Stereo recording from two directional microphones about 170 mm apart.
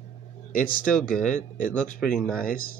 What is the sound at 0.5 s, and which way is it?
Speech, 55° left (ahead or behind).